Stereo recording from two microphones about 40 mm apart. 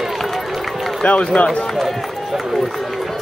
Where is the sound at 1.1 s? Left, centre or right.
Left.